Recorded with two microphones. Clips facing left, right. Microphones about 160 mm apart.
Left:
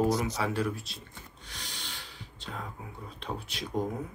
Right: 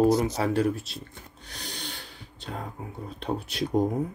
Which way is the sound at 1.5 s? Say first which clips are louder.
Right 6 dB; 45° right (ahead or behind).